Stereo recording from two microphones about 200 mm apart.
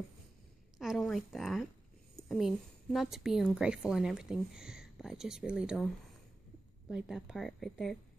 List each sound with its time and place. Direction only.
0.7 s a woman's voice: centre (ahead or behind)
6.9 s a woman's voice: 5° right (ahead or behind)